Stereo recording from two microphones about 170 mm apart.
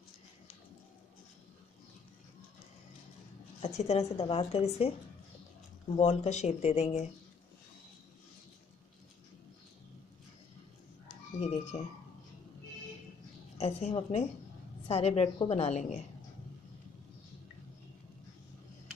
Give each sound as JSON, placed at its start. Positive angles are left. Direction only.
{"t": 3.6, "sound": "a woman's voice", "side_deg": 40}
{"t": 5.9, "sound": "a woman's voice", "side_deg": 40}
{"t": 11.3, "sound": "emergency vehicle", "side_deg": 40}
{"t": 13.6, "sound": "a woman's voice", "side_deg": 40}